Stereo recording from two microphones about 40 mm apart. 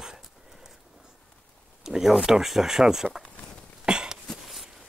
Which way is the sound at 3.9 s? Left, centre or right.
Right.